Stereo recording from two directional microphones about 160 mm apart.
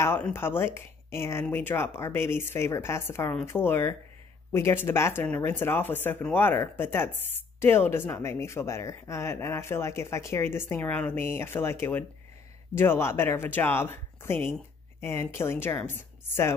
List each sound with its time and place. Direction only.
0.0 s speech: 15° left (ahead or behind)